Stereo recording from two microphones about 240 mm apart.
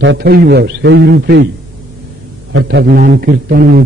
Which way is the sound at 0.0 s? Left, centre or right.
Right.